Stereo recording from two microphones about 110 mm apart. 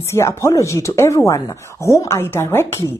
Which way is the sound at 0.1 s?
25° left (ahead or behind).